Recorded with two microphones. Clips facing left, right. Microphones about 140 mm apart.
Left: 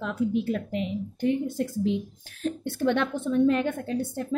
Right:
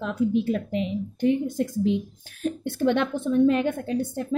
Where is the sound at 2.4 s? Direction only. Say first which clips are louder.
Right 2 dB; 15° right (ahead or behind).